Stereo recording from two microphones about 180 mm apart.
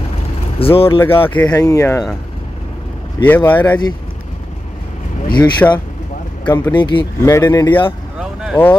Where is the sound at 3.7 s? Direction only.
25° left (ahead or behind).